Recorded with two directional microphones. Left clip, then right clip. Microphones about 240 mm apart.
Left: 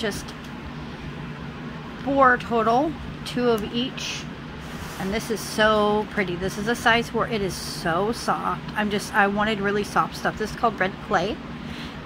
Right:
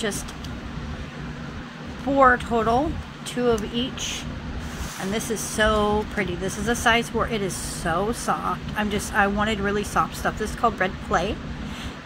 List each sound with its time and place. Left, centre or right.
2.1 s speech: centre